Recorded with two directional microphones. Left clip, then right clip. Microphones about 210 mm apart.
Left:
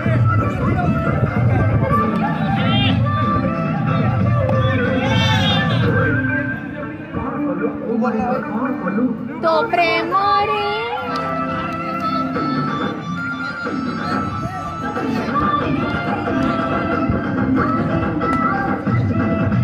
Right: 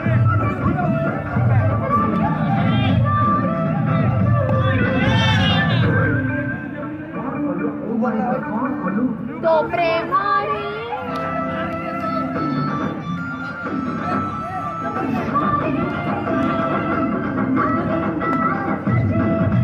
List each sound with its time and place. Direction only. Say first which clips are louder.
5.0 s crowd: left 1 dB; centre (ahead or behind)
9.4 s speech: left 1 dB; 55° left (ahead or behind)
10.3 s child singing: left 3 dB; 50° left (ahead or behind)
15.3 s music: left 1 dB; 50° left (ahead or behind)